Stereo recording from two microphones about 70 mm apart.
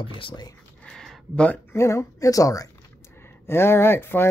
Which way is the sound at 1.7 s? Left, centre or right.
Left.